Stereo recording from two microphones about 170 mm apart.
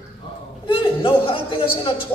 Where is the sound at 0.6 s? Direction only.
30° left (ahead or behind).